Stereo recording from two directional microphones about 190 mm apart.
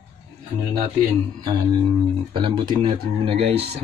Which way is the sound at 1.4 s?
20° right (ahead or behind).